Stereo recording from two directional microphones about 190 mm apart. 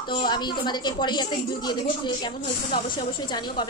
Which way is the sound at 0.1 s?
25° left (ahead or behind).